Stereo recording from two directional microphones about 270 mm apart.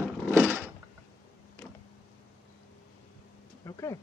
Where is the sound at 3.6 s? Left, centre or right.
Centre.